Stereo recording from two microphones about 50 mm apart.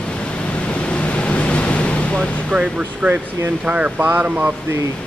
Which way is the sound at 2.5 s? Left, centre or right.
Right.